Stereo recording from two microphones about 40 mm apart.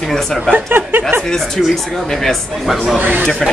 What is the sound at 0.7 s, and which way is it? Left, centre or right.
Speech, right.